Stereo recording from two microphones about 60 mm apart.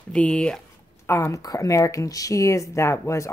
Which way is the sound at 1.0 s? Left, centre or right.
Left.